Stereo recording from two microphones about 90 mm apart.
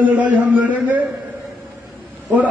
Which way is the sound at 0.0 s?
15° right (ahead or behind).